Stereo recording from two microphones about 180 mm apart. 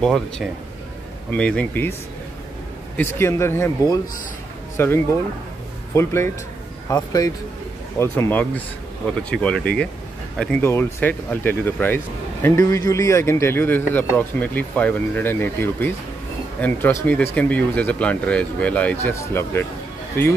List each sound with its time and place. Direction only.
0.0 s speech: centre (ahead or behind)
3.0 s a man's voice: 15° left (ahead or behind)